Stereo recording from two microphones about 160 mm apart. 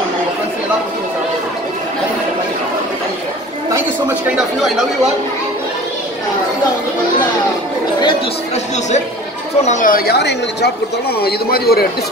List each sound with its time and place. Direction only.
9.6 s speech: 50° left (ahead or behind); by 10.7 s 90° left
11.1 s a man's voice: 75° left (ahead or behind)